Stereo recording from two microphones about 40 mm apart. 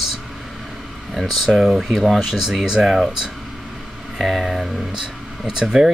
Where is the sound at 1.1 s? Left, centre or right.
Centre.